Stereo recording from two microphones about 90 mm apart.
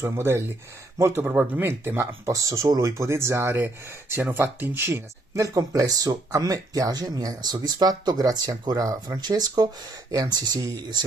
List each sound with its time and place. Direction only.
0.0 s speech: 30° right (ahead or behind)
1.2 s speech: 15° right (ahead or behind)
2.3 s speech: 40° right (ahead or behind)